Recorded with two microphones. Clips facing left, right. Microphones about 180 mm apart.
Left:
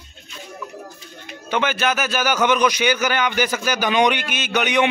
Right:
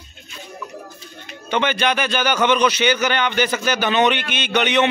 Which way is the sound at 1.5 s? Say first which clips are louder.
Right 1 dB; 5° left (ahead or behind).